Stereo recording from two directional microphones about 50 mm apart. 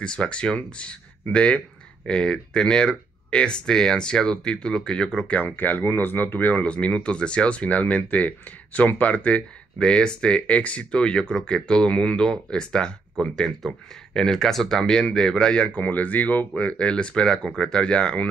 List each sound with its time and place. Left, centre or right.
0.0 s speech: left
5.3 s speech: left
6.7 s speech: left
15.8 s speech: left